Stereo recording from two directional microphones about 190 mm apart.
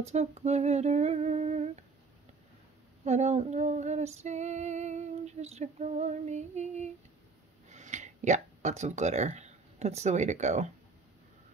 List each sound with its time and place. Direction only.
0.0 s female singing: 35° right (ahead or behind)
3.0 s female singing: 35° right (ahead or behind)
7.7 s speech: 40° right (ahead or behind)